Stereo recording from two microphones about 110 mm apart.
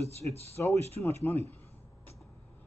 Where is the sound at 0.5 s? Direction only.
25° left (ahead or behind).